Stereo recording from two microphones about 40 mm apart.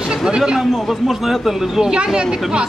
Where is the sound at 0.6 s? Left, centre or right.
Centre.